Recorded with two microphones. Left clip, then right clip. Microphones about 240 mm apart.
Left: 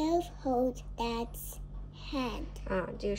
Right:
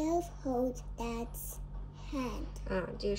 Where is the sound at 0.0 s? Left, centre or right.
Centre.